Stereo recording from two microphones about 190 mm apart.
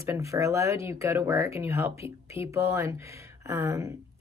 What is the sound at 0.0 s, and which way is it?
A woman's voice, 15° right (ahead or behind).